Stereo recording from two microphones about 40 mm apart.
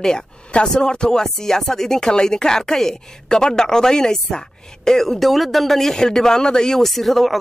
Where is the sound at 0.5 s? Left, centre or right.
Left.